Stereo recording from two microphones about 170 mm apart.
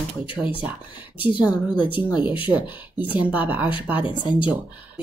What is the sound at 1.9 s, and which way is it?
Speech, 10° right (ahead or behind).